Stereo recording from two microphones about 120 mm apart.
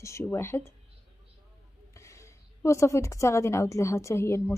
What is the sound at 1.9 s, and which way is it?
A woman's voice, 25° left (ahead or behind).